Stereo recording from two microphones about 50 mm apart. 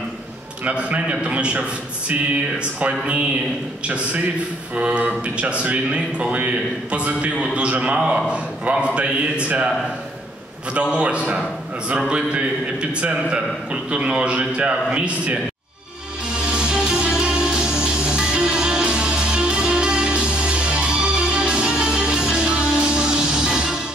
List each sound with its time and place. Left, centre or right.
0.7 s a man's voice: right
2.8 s a man's voice: right
10.7 s a man's voice: right
13.8 s a man's voice: right
16.5 s music: centre